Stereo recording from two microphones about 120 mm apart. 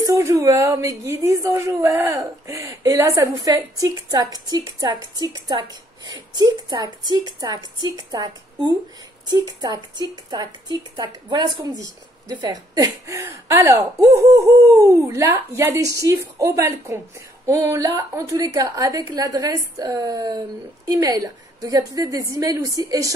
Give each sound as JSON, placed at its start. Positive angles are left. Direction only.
{"t": 0.0, "sound": "a woman's voice", "side_deg": -25}